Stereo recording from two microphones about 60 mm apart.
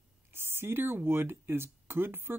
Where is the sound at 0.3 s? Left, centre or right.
Right.